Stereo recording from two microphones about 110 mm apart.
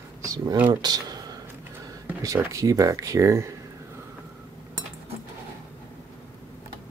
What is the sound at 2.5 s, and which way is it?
Speech, 30° right (ahead or behind).